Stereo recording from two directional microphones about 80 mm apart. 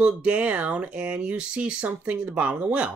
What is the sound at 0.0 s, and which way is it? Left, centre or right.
Speech, centre.